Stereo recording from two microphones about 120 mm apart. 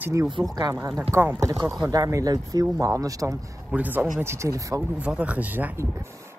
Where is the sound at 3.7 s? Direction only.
15° right (ahead or behind).